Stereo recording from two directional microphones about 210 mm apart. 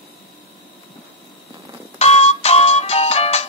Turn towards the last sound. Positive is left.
turn(degrees=30)  # may be behind; listen again after turning